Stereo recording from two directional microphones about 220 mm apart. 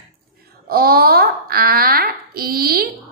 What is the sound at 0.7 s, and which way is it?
A woman's voice, 45° right (ahead or behind).